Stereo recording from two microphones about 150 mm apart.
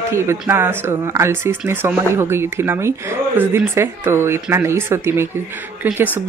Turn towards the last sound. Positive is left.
turn(degrees=-10)  # may be behind; listen again after turning